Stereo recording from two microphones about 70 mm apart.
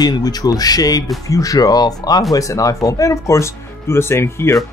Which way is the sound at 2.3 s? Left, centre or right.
Left.